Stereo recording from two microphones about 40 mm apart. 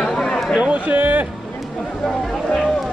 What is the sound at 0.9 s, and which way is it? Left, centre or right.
Speech, right.